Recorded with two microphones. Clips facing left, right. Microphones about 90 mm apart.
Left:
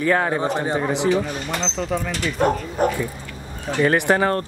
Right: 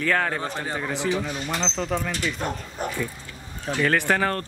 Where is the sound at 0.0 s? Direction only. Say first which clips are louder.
Left 5 dB; 20° left (ahead or behind).